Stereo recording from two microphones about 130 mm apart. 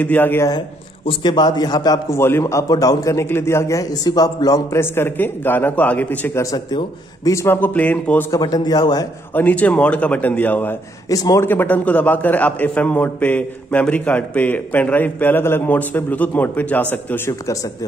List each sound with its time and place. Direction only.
0.0 s a man's voice: 15° left (ahead or behind)
1.0 s a man's voice: 35° left (ahead or behind)
4.7 s a man's voice: 15° left (ahead or behind)
6.4 s a man's voice: 30° left (ahead or behind)
7.2 s a man's voice: 20° left (ahead or behind)
8.3 s a man's voice: 30° left (ahead or behind)
9.3 s a man's voice: 15° left (ahead or behind)
11.1 s a man's voice: 25° left (ahead or behind)
11.4 s a man's voice: 15° left (ahead or behind)